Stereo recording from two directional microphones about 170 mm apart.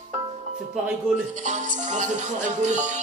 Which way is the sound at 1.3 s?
45° right (ahead or behind).